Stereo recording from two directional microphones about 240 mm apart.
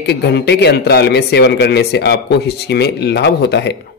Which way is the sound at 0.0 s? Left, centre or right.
Left.